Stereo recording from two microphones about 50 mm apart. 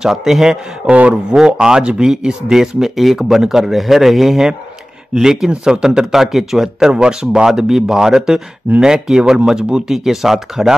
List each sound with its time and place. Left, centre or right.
0.0 s speech: centre
0.8 s a man's voice: right
1.3 s speech: centre